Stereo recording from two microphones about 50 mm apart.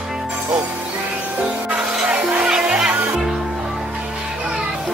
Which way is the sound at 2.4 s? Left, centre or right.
Centre.